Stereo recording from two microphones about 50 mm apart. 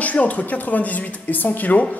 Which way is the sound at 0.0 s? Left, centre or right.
Left.